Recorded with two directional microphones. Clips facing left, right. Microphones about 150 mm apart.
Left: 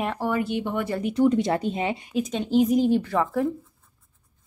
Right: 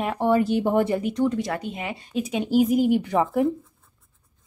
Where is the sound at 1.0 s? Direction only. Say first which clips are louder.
Left 2 dB; 5° left (ahead or behind).